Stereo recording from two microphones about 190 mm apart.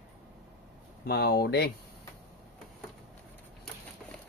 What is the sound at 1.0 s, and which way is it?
Speech, 55° left (ahead or behind).